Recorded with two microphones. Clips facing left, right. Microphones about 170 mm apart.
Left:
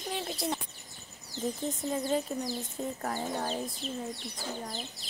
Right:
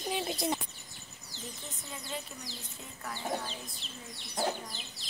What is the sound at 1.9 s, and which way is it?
Speech, 45° left (ahead or behind).